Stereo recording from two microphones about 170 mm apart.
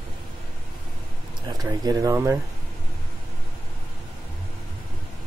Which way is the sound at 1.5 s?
20° right (ahead or behind).